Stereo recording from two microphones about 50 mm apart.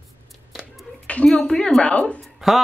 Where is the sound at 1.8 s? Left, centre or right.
Left.